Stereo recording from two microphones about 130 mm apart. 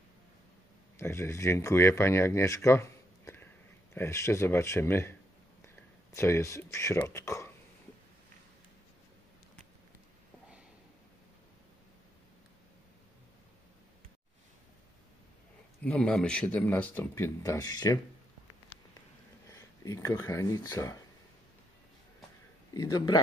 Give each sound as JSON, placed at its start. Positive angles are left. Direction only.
{"t": 0.9, "sound": "speech", "side_deg": 20}
{"t": 6.1, "sound": "speech", "side_deg": 20}
{"t": 15.8, "sound": "speech", "side_deg": 5}
{"t": 19.4, "sound": "speech", "side_deg": 25}
{"t": 22.8, "sound": "speech", "side_deg": 30}